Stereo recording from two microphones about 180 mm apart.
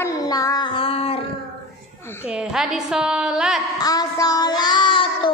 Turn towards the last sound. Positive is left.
turn(degrees=25)  # may be behind; listen again after turning